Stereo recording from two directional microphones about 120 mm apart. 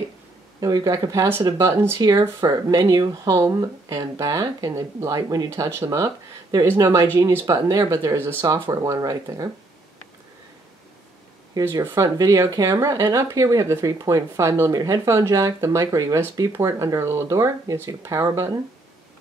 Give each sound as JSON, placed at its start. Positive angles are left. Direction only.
{"t": 0.6, "sound": "speech", "side_deg": -30}
{"t": 11.8, "sound": "speech", "side_deg": -25}